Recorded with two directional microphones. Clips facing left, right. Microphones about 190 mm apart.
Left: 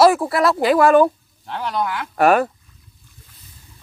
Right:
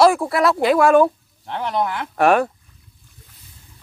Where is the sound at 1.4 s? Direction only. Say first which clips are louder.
Right 1 dB; 20° right (ahead or behind).